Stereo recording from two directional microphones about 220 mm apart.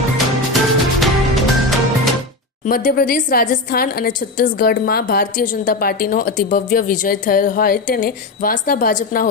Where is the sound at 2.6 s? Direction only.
40° left (ahead or behind).